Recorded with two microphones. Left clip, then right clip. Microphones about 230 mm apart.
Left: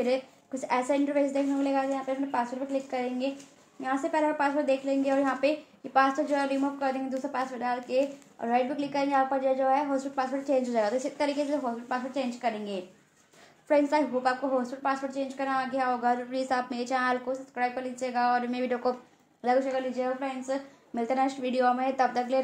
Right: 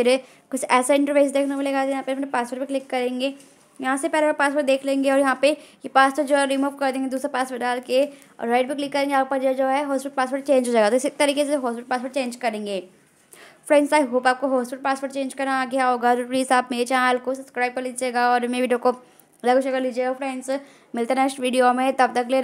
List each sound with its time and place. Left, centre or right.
0.0 s a woman's voice: right